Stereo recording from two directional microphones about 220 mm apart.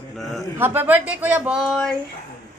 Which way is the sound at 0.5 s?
10° right (ahead or behind).